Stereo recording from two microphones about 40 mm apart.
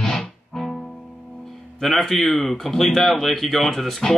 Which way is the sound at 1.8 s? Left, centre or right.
Centre.